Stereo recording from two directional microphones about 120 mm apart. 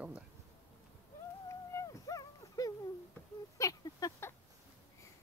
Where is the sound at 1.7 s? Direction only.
25° left (ahead or behind).